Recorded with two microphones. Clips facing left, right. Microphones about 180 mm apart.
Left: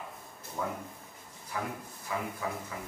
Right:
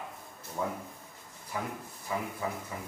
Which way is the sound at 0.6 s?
10° right (ahead or behind).